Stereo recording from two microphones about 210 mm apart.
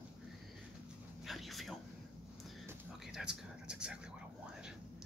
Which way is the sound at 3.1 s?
5° right (ahead or behind).